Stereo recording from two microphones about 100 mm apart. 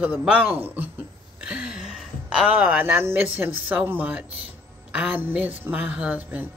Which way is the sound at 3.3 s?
15° right (ahead or behind).